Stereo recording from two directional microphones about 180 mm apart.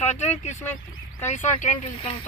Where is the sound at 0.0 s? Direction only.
40° left (ahead or behind).